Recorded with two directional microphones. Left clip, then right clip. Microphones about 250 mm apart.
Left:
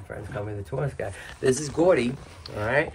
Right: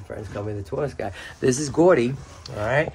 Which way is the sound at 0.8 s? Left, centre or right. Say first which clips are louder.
Right 3 dB; right.